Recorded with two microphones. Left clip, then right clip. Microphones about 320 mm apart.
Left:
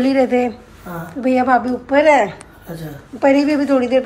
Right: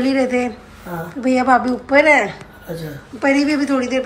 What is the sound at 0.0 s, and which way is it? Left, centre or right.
A woman's voice, centre.